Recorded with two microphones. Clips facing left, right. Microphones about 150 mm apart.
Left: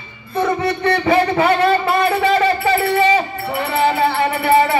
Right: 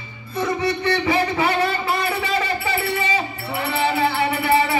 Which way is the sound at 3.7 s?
50° left (ahead or behind).